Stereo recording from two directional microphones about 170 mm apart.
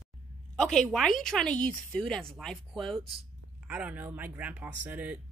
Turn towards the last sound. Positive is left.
turn(degrees=-10)  # may be behind; listen again after turning